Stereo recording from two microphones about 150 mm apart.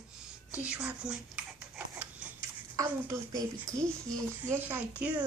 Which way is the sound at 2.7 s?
20° right (ahead or behind).